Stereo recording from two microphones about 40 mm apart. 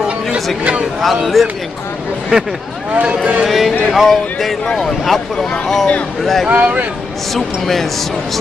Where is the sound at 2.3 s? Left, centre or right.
Right.